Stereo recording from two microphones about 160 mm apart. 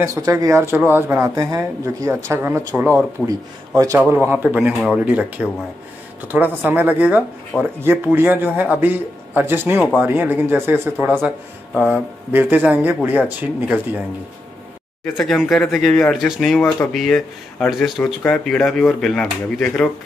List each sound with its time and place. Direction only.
0.0 s speech: 20° right (ahead or behind)
15.1 s speech: centre (ahead or behind)